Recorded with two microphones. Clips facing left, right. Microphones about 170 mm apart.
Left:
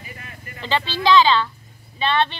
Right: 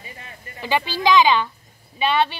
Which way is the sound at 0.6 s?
15° right (ahead or behind).